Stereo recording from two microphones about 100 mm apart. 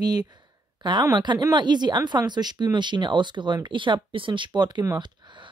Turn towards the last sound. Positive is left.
turn(degrees=-45)  # may be behind; listen again after turning